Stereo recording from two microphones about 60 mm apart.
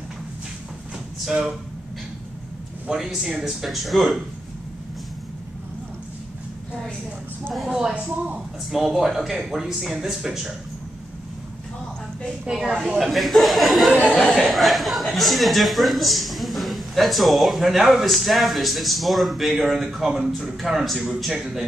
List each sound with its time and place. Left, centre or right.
1.2 s speech: centre
2.9 s speech: centre
7.4 s speech: centre
7.7 s speech: centre
8.6 s speech: centre
12.4 s speech: centre
13.1 s speech: centre